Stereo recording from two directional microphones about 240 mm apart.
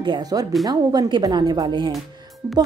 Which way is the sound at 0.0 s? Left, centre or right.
Centre.